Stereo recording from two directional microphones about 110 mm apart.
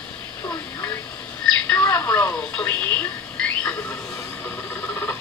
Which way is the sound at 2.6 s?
20° left (ahead or behind).